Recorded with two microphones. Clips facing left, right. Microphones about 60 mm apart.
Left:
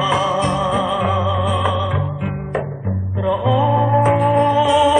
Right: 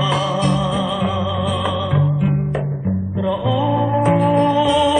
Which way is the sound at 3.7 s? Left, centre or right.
Centre.